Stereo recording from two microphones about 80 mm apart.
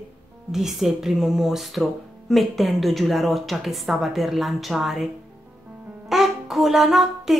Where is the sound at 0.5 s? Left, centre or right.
Centre.